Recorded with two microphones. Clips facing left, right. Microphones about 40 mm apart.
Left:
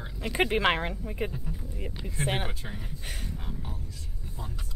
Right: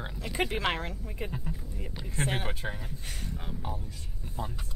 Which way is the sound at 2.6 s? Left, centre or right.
Right.